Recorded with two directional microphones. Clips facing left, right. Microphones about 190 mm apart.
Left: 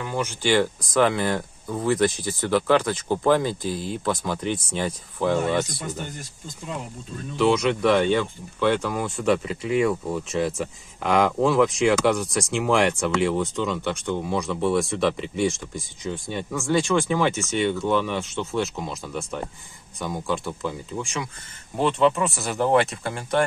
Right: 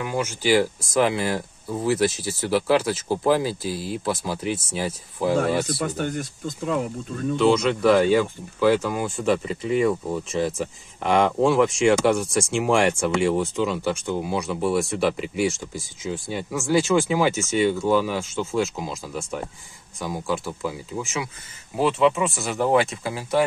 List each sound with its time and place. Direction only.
0.4 s speech: 5° right (ahead or behind)
5.7 s speech: 60° right (ahead or behind)
7.3 s speech: centre (ahead or behind)